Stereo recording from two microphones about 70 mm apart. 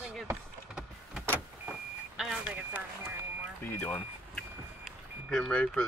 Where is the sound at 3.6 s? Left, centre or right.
Left.